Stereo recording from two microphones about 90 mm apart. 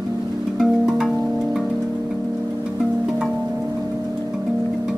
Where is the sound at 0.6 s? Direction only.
Centre (ahead or behind).